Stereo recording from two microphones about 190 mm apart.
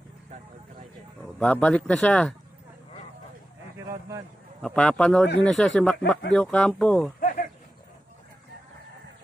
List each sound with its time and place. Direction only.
1.4 s speech: 5° left (ahead or behind)
4.6 s speech: 5° left (ahead or behind)
7.2 s a sound: 45° left (ahead or behind)